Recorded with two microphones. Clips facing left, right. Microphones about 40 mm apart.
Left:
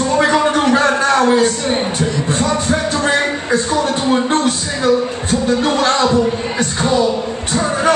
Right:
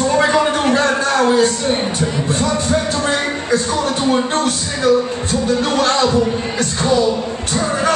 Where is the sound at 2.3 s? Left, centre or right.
Left.